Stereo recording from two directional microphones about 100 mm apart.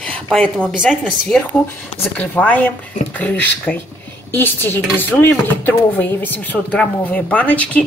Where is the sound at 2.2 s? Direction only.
15° left (ahead or behind).